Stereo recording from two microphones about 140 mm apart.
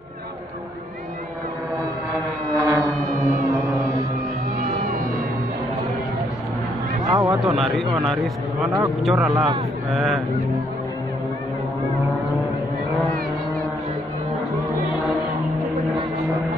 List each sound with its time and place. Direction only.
2.1 s foghorn: centre (ahead or behind)
3.0 s music: 25° right (ahead or behind)
4.6 s music: 55° right (ahead or behind)
7.1 s a sound: 25° right (ahead or behind)
7.3 s speech: centre (ahead or behind)
14.5 s music: 25° right (ahead or behind)